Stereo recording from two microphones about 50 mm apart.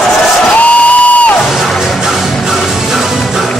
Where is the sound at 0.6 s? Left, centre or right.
Left.